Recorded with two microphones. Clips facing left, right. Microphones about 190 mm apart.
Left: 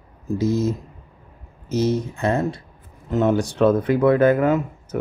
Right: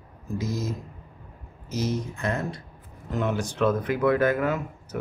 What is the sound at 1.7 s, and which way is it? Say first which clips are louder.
Speech: left 7 dB; 30° left (ahead or behind).